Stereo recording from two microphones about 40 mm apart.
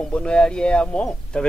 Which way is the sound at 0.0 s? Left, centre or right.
Left.